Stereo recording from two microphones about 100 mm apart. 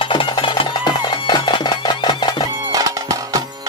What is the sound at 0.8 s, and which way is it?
Music, 50° left (ahead or behind).